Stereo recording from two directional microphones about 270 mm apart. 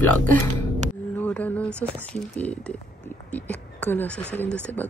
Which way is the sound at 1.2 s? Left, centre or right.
Centre.